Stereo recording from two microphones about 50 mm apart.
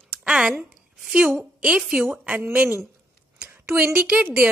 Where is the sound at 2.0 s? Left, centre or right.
Right.